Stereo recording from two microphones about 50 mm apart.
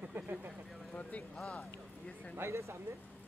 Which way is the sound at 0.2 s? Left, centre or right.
Right.